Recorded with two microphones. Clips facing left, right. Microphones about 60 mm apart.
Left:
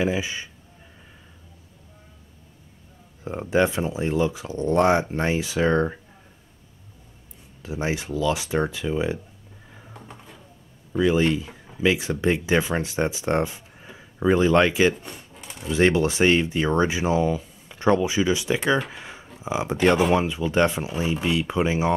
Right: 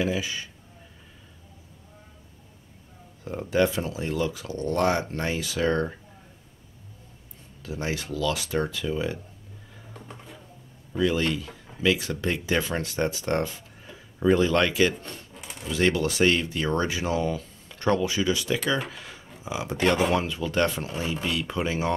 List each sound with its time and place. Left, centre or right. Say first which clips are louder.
0.0 s speech: left 3 dB; left
3.3 s speech: left 2 dB; left
7.6 s speech: left 4 dB; centre
9.9 s a sound: right 1 dB; centre
10.9 s speech: left 4 dB; centre
15.4 s typewriter: left 3 dB; centre
15.7 s speech: left 4 dB; left
18.9 s a sound: left 2 dB; left
19.4 s speech: left 4 dB; left